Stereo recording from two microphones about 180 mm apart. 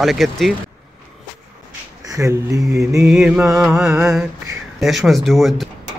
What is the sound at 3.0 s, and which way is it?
Speech, 5° right (ahead or behind).